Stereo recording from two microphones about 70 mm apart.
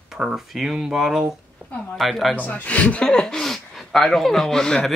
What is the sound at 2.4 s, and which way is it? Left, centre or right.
Speech, left.